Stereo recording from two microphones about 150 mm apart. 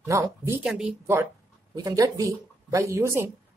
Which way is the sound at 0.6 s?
5° right (ahead or behind).